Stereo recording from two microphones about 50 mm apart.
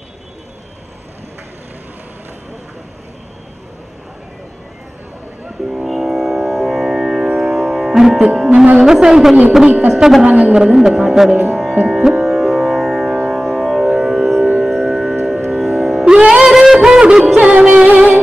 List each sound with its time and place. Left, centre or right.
5.9 s music: centre
8.7 s speech: centre
10.2 s a woman's voice: right
10.5 s speech: centre
11.5 s music: centre
16.4 s a sound: centre
17.4 s music: right